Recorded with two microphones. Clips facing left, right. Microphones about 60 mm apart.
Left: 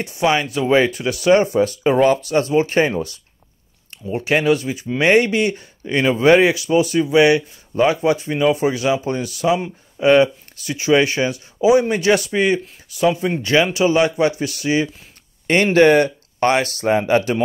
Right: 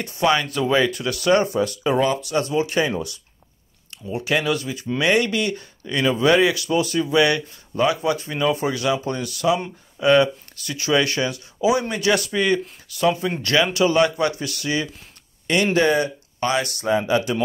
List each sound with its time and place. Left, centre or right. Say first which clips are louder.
0.2 s speech: left 2 dB; left
15.4 s speech: left 6 dB; left